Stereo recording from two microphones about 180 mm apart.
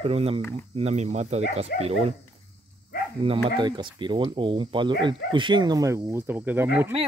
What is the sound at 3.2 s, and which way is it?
Speech, 30° right (ahead or behind).